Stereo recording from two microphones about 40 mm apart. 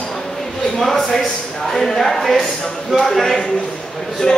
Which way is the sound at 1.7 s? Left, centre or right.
Centre.